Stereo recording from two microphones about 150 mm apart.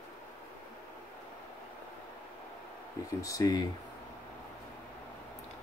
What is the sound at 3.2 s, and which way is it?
Speech, 25° left (ahead or behind).